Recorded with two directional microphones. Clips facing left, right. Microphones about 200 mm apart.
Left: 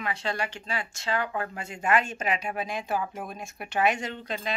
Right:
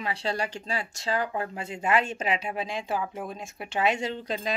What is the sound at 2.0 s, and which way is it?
Speech, 30° right (ahead or behind).